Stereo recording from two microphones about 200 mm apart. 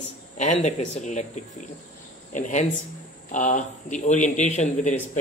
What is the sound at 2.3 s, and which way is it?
A man's voice, 40° left (ahead or behind).